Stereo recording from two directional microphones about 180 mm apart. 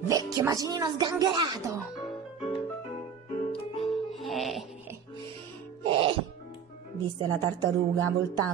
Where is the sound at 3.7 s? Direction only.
Centre (ahead or behind).